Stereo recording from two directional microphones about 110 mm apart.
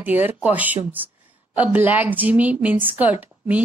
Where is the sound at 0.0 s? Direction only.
15° right (ahead or behind).